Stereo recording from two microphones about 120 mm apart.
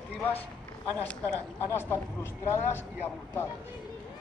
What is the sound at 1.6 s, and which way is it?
Speech, 20° left (ahead or behind).